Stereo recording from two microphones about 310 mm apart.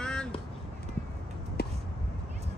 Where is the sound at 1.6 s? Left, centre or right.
Left.